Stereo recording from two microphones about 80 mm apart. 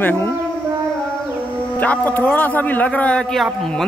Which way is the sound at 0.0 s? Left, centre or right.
Left.